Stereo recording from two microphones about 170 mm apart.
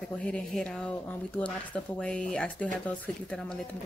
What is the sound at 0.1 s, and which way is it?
Speech, 5° left (ahead or behind).